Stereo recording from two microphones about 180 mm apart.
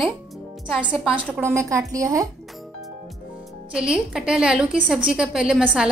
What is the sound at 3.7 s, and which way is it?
A woman's voice, 5° right (ahead or behind).